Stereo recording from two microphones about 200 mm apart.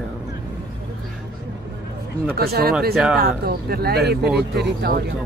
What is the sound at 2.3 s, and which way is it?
Speech, 50° right (ahead or behind).